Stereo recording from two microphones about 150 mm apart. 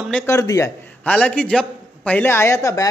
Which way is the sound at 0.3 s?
20° left (ahead or behind).